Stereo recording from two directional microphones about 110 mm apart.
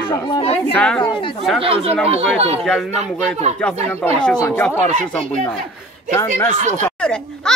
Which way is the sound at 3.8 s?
20° left (ahead or behind).